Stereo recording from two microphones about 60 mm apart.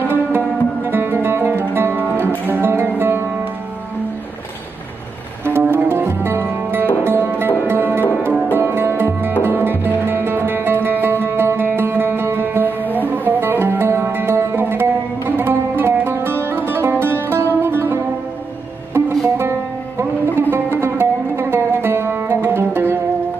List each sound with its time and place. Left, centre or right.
0.1 s music: right
5.6 s music: right
20.3 s music: right